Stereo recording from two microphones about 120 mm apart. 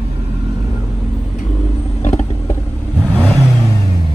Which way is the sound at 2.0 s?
70° left (ahead or behind).